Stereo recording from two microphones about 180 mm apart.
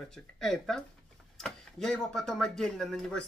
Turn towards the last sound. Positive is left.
turn(degrees=5)  # may be behind; listen again after turning